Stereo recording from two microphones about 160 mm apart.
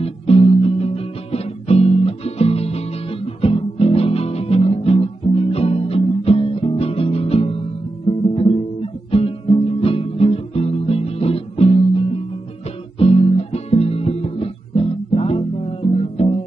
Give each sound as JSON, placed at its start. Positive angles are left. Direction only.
{"t": 0.0, "sound": "music", "side_deg": 40}
{"t": 8.1, "sound": "guitar", "side_deg": 35}
{"t": 9.1, "sound": "music", "side_deg": 35}
{"t": 13.0, "sound": "guitar", "side_deg": 40}